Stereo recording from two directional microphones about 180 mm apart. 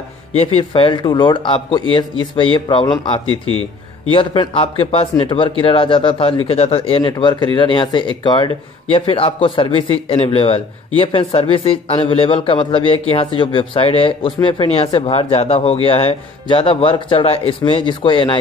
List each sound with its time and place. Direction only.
0.3 s speech: 35° left (ahead or behind)